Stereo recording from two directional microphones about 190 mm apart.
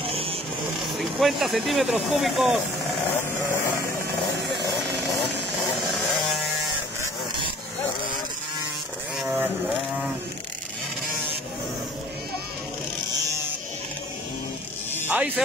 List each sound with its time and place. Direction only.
0.0 s vehicle: 30° right (ahead or behind)
0.9 s speech: centre (ahead or behind)
9.2 s vehicle: 5° right (ahead or behind)
15.0 s a sound: 10° right (ahead or behind)